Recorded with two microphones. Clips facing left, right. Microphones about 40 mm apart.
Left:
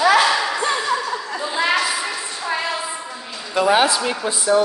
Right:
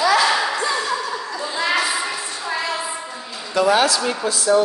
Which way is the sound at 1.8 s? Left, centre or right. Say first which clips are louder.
Even; centre.